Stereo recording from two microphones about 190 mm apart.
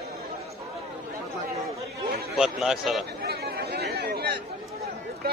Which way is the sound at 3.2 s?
55° right (ahead or behind).